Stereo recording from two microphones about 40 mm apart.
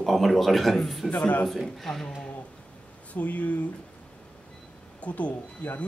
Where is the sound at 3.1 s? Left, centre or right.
Left.